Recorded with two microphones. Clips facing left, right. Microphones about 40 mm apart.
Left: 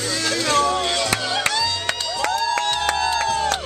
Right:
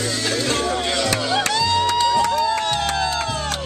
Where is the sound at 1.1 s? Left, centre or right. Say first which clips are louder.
Right 2 dB; centre.